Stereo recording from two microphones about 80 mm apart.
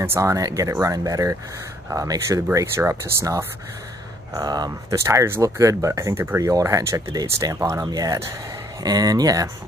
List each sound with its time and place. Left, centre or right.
0.0 s speech: right
2.5 s speech: right
4.4 s speech: right
4.8 s speech: right